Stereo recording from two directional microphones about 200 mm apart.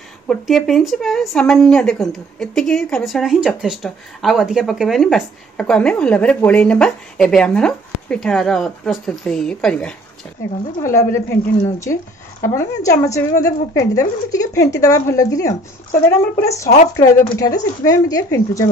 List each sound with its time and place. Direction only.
0.3 s speech: centre (ahead or behind)
10.8 s a woman's voice: 15° left (ahead or behind)
16.6 s a woman's voice: 35° left (ahead or behind)
16.9 s a woman's voice: 15° left (ahead or behind)